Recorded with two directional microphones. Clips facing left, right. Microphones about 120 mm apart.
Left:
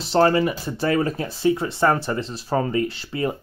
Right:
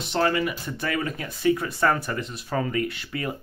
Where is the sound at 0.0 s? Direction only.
35° left (ahead or behind).